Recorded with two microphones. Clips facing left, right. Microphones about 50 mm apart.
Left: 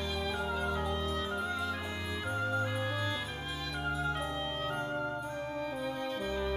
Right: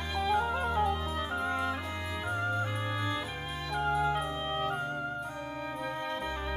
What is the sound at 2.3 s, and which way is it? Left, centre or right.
Music, centre.